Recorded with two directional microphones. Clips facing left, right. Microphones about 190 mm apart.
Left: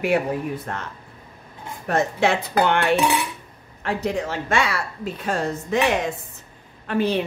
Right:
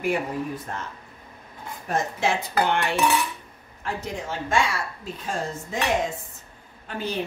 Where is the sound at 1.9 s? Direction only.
65° left (ahead or behind).